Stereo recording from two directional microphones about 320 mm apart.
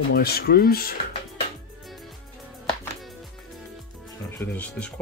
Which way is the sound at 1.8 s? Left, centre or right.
Centre.